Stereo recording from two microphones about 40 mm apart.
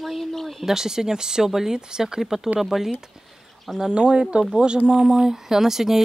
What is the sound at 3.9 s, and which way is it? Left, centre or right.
Speech, right.